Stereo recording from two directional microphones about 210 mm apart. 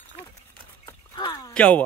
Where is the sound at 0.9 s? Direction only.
15° left (ahead or behind).